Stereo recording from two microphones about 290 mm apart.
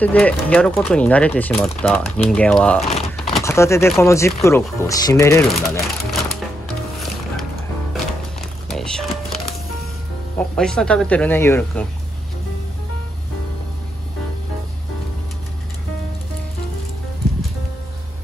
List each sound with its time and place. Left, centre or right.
0.0 s speech: centre
2.9 s a sound: left
3.3 s speech: centre
8.6 s music: centre
10.5 s speech: centre